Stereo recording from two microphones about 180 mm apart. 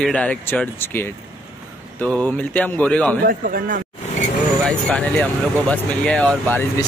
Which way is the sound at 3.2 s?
55° right (ahead or behind).